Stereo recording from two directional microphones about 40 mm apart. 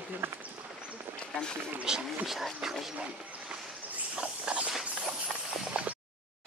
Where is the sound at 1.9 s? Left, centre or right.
Centre.